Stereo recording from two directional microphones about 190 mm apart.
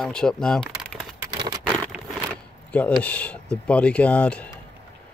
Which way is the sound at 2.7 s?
5° left (ahead or behind).